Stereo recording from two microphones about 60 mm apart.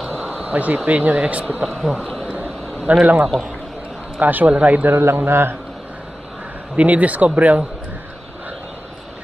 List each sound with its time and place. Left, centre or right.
0.4 s a sound: right
0.8 s speech: right
1.6 s speech: centre
2.2 s a sound: right
4.2 s speech: right
4.9 s a man's voice: right
6.8 s speech: right